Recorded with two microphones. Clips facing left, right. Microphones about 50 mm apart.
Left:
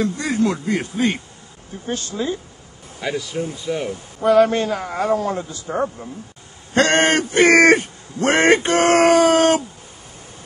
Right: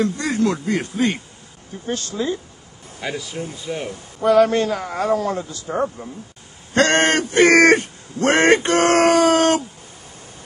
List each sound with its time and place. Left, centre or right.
0.2 s a man's voice: centre
2.2 s a man's voice: centre
3.0 s speech: centre
4.3 s a man's voice: centre
6.7 s speech: centre